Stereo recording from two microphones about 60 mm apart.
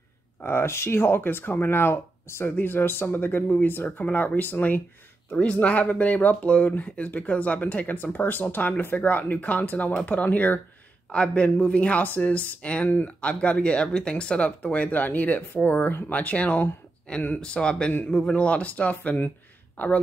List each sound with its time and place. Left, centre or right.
0.4 s speech: left
11.1 s speech: centre
19.0 s speech: left